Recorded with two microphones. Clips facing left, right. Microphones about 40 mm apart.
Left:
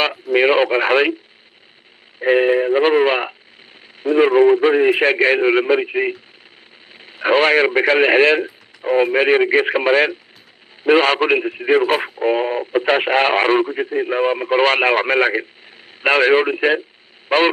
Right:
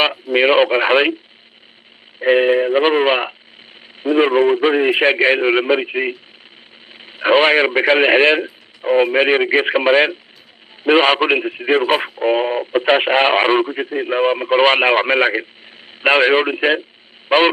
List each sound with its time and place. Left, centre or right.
0.3 s speech: centre
2.2 s a man's voice: centre
13.7 s speech: centre
13.9 s speech: centre